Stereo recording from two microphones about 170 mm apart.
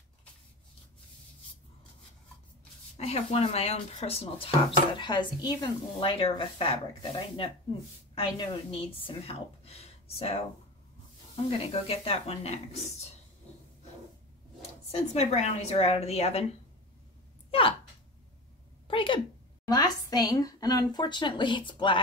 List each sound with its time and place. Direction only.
3.0 s a woman's voice: 35° left (ahead or behind)
11.9 s speech: 35° left (ahead or behind)
14.9 s speech: 40° left (ahead or behind)
17.5 s speech: 30° left (ahead or behind)
18.9 s a woman's voice: 30° left (ahead or behind)